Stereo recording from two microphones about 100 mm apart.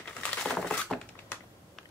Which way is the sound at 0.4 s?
5° left (ahead or behind).